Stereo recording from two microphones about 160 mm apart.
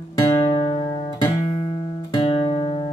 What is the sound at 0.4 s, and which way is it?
Music, 40° left (ahead or behind).